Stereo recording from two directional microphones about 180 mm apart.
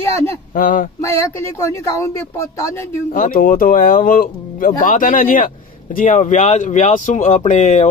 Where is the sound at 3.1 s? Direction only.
50° left (ahead or behind).